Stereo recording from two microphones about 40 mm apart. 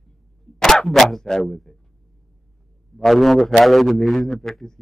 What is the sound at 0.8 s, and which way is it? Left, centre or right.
Speech, centre.